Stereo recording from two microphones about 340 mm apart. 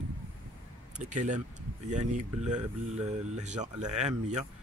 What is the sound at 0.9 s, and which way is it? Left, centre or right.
Speech, right.